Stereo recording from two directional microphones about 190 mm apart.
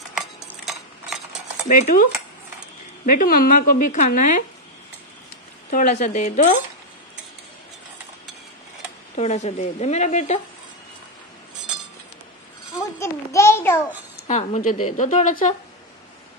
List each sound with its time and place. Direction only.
0.7 s a sound: centre (ahead or behind)
1.7 s speech: 45° left (ahead or behind)
3.1 s speech: 50° left (ahead or behind)
5.7 s speech: 40° left (ahead or behind)
9.1 s speech: 35° left (ahead or behind)
12.7 s a sound: 15° left (ahead or behind)
14.2 s speech: 35° left (ahead or behind)